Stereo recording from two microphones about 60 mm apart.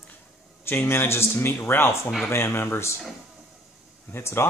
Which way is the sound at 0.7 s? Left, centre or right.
Left.